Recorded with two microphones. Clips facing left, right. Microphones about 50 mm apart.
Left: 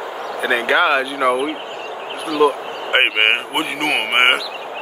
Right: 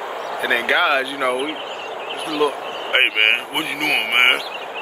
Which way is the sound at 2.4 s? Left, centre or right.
Centre.